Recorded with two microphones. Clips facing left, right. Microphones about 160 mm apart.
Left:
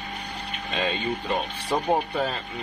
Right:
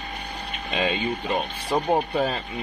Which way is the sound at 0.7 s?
15° right (ahead or behind).